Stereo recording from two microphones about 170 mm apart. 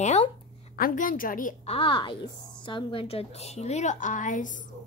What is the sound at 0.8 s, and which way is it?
Speech, 55° left (ahead or behind).